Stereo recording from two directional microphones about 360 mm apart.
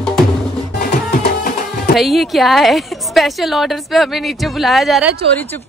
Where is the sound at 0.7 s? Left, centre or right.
Left.